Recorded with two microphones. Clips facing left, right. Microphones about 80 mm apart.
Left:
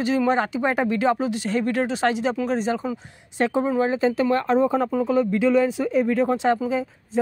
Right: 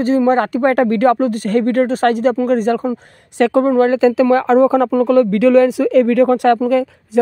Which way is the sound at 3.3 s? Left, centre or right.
Right.